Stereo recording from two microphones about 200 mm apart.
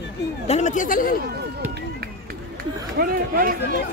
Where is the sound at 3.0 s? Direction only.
45° right (ahead or behind).